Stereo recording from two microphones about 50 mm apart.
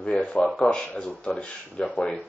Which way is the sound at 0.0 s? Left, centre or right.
Centre.